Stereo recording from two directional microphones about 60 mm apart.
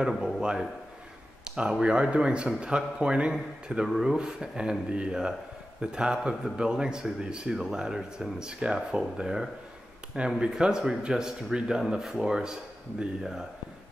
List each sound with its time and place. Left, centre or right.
0.0 s a man's voice: centre